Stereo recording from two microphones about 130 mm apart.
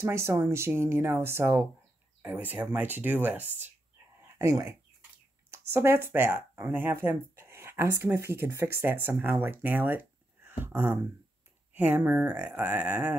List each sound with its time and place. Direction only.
0.0 s speech: 20° right (ahead or behind)